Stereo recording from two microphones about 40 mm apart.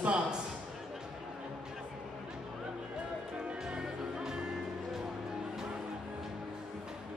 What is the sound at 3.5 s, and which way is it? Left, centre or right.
Music, right.